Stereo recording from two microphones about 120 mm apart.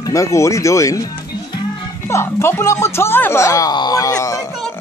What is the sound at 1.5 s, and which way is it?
Music, 35° left (ahead or behind).